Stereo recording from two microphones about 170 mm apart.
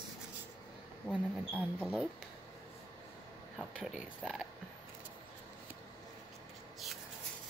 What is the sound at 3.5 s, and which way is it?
Speech, 5° right (ahead or behind).